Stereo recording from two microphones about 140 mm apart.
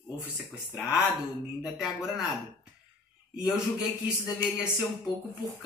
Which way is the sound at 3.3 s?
5° right (ahead or behind).